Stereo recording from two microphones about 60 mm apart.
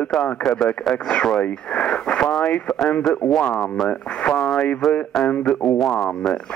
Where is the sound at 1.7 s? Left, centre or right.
Centre.